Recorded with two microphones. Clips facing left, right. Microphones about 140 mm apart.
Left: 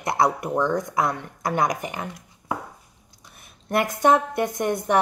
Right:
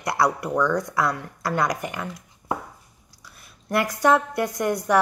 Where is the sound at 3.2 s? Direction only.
20° left (ahead or behind).